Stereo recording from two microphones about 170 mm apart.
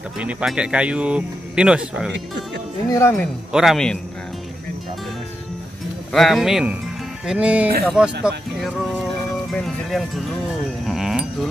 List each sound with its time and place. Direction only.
0.2 s speech: 5° right (ahead or behind)
2.9 s speech: 15° left (ahead or behind)
3.5 s speech: centre (ahead or behind)
6.1 s speech: centre (ahead or behind)
10.9 s music: centre (ahead or behind)